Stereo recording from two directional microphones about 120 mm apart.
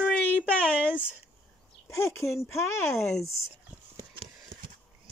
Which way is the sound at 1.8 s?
20° left (ahead or behind).